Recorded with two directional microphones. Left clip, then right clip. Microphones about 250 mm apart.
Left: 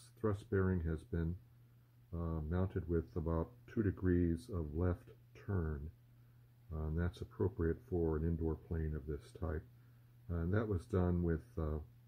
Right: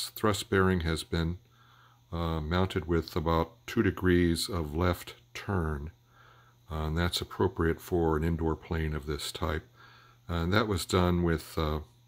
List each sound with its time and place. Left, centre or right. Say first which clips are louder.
0.2 s speech: right 11 dB; right